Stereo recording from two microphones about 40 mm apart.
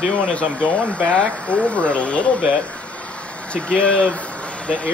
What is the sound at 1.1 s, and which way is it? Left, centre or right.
Speech, left.